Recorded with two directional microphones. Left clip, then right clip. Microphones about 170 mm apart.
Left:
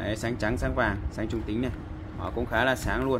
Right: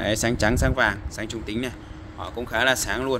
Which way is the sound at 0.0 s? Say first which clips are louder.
Right 7 dB; 60° right (ahead or behind).